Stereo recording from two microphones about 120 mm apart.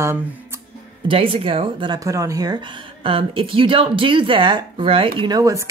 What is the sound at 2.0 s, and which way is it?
Speech, 25° right (ahead or behind).